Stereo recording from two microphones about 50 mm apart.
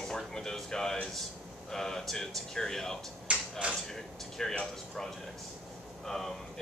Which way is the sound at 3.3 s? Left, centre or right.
Right.